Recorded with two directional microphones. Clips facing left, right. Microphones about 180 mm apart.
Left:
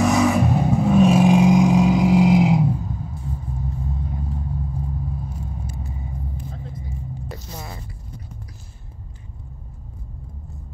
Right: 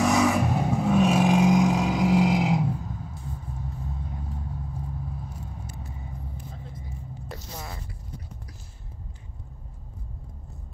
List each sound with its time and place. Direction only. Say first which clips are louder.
0.0 s vehicle: left 4 dB; 5° left (ahead or behind)
6.3 s vehicle: left 6 dB; 90° left
7.2 s a sound: left 3 dB; 5° left (ahead or behind)